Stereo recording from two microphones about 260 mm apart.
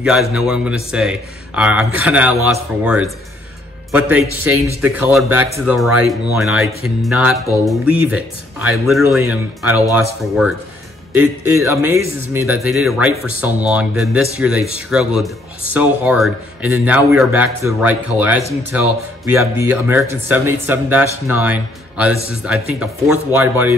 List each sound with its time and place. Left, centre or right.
0.3 s speech: centre
19.4 s speech: centre
22.1 s speech: left
22.4 s speech: centre